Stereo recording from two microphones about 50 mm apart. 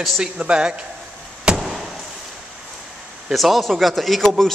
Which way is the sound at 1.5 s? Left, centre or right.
Centre.